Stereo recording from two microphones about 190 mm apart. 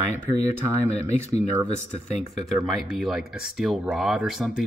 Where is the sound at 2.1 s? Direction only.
Centre (ahead or behind).